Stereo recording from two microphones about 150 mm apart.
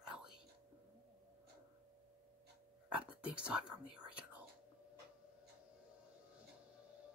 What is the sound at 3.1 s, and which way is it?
Whispering, 10° right (ahead or behind).